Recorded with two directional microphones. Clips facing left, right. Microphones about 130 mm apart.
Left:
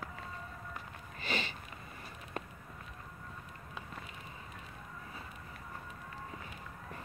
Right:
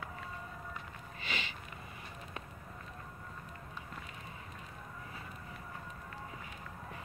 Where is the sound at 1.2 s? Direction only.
40° left (ahead or behind).